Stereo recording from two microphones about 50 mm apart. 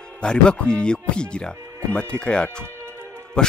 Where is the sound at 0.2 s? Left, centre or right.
Centre.